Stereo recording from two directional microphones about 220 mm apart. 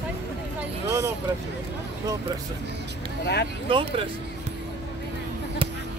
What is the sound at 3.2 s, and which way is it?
Vehicle, 50° left (ahead or behind).